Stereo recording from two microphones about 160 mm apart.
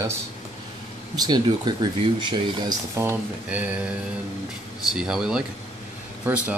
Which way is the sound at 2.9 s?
15° right (ahead or behind).